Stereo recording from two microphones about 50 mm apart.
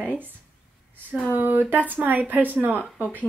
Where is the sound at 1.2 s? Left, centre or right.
Right.